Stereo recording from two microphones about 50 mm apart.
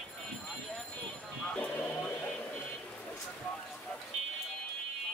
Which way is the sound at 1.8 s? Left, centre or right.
Left.